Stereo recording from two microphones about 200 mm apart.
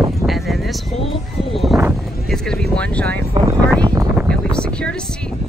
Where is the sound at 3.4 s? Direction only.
25° right (ahead or behind).